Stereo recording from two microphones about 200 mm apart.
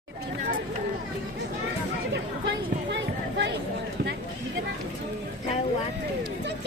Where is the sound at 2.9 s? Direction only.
60° right (ahead or behind).